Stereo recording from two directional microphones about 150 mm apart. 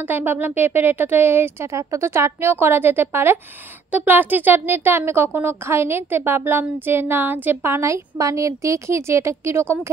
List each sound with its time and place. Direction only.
0.0 s speech: 15° right (ahead or behind)